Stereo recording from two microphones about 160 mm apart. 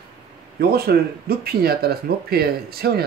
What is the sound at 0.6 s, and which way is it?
Speech, 75° right (ahead or behind).